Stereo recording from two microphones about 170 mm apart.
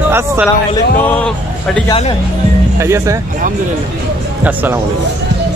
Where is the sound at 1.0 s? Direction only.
10° left (ahead or behind).